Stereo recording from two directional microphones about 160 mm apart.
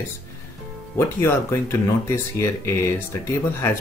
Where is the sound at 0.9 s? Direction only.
15° left (ahead or behind).